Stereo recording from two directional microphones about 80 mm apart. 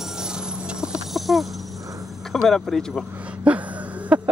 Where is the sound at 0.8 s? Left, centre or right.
Centre.